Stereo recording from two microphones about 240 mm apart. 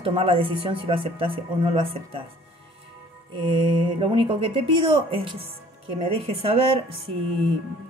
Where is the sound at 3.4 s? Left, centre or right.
Right.